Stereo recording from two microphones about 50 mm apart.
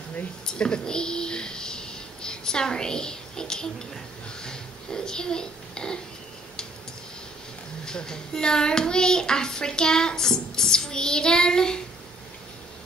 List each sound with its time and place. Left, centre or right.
0.5 s speech: centre
7.8 s a child's voice: centre